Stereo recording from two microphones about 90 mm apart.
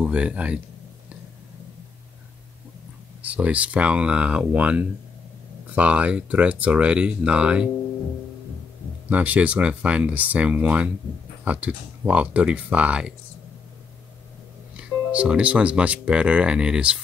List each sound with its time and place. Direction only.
0.0 s speech: 15° right (ahead or behind)
3.3 s speech: 15° right (ahead or behind)
9.1 s speech: 15° right (ahead or behind)
14.8 s speech: 15° right (ahead or behind)